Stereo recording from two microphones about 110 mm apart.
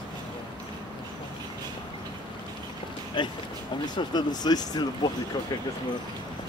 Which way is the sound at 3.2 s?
45° left (ahead or behind).